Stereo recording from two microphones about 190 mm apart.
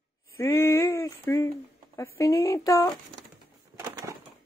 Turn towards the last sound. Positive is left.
turn(degrees=-15)  # may be behind; listen again after turning